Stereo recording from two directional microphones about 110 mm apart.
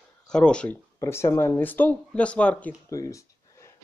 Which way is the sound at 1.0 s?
25° left (ahead or behind).